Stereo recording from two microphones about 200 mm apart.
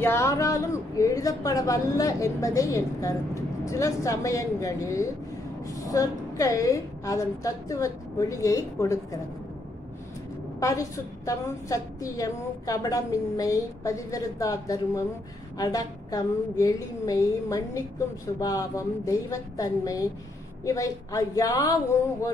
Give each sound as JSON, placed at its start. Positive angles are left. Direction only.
{"t": 0.0, "sound": "a man's voice", "side_deg": 15}
{"t": 10.6, "sound": "a man's voice", "side_deg": 15}